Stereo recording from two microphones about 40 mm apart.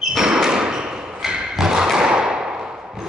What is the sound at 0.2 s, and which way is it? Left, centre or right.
Thump, centre.